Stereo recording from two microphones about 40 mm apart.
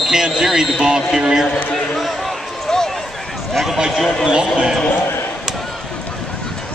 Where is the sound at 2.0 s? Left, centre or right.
Centre.